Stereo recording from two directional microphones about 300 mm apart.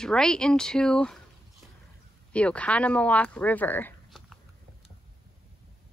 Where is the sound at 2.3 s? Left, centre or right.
Centre.